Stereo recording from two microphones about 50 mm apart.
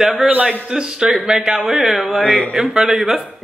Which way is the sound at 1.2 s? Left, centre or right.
Centre.